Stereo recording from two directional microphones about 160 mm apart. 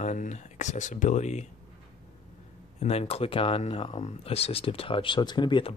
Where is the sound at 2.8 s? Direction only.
40° left (ahead or behind).